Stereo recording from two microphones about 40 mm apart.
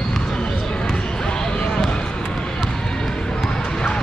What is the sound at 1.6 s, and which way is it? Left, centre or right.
Basketball bounce, centre.